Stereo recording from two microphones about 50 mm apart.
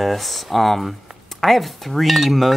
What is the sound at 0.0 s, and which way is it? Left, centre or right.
Speech, centre.